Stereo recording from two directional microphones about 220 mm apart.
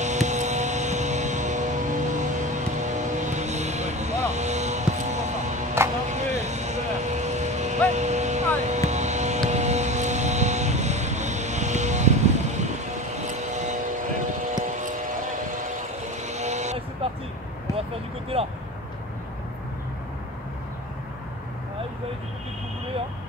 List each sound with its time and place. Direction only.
0.0 s vehicle: 30° right (ahead or behind)
16.1 s vehicle: 30° right (ahead or behind)
18.3 s vehicle: 25° right (ahead or behind)